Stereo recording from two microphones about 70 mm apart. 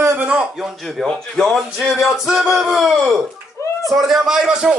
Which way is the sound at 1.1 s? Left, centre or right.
Centre.